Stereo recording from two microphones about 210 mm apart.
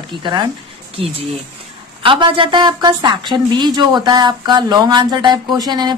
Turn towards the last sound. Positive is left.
turn(degrees=-20)  # may be behind; listen again after turning